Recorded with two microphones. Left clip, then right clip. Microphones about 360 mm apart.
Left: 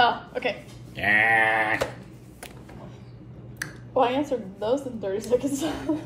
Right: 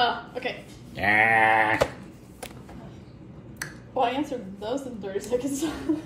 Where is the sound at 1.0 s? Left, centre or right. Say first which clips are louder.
Even; centre.